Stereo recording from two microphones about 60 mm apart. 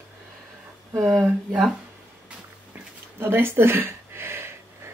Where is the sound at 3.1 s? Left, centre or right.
Right.